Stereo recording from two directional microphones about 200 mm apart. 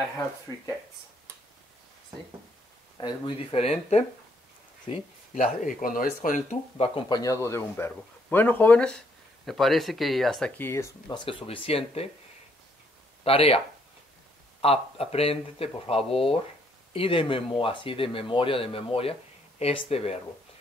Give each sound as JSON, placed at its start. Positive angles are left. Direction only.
{"t": 3.0, "sound": "speech", "side_deg": 25}
{"t": 5.3, "sound": "speech", "side_deg": 40}
{"t": 7.0, "sound": "speech", "side_deg": 20}
{"t": 13.2, "sound": "speech", "side_deg": 30}
{"t": 14.6, "sound": "speech", "side_deg": 30}